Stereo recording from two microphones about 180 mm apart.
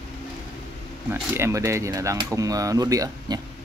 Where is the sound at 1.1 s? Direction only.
15° right (ahead or behind).